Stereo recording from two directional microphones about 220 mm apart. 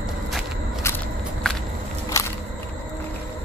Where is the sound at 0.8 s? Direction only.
5° left (ahead or behind).